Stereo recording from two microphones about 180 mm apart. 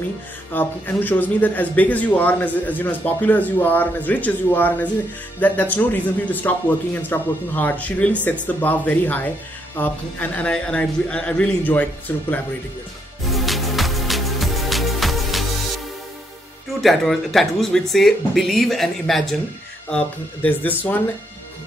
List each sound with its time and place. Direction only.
0.5 s a man's voice: 10° left (ahead or behind)
13.3 s music: centre (ahead or behind)
16.8 s a man's voice: centre (ahead or behind)